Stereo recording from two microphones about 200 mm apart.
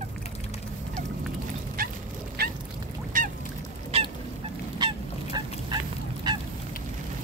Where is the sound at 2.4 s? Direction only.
50° right (ahead or behind).